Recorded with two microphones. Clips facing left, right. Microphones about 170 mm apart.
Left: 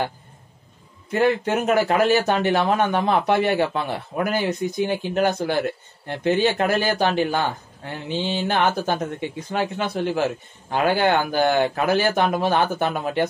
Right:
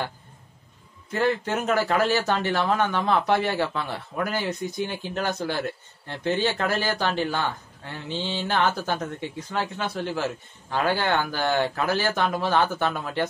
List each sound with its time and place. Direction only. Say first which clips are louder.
1.1 s speech: left 4 dB; 15° left (ahead or behind)